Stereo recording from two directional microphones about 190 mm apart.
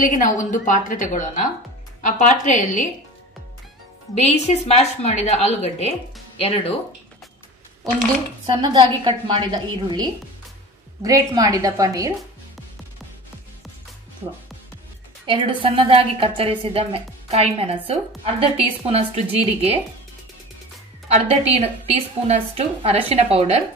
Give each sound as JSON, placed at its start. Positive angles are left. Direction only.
{"t": 0.0, "sound": "a woman's voice", "side_deg": 40}
{"t": 4.1, "sound": "speech", "side_deg": 35}
{"t": 8.5, "sound": "a woman's voice", "side_deg": -25}
{"t": 15.2, "sound": "a woman's voice", "side_deg": -30}
{"t": 21.1, "sound": "a woman's voice", "side_deg": -35}